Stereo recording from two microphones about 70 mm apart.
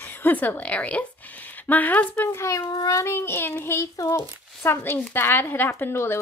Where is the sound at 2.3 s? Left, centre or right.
Left.